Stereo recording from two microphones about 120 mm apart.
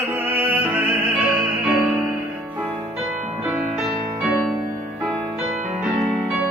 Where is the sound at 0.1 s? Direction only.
15° right (ahead or behind).